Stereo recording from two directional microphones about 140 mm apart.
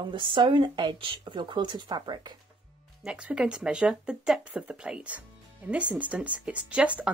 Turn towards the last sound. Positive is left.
turn(degrees=-10)  # may be behind; listen again after turning